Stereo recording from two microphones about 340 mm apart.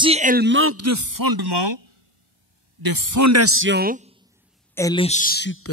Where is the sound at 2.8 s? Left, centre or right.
Right.